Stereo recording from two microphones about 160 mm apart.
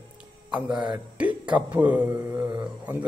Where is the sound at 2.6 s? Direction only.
10° right (ahead or behind).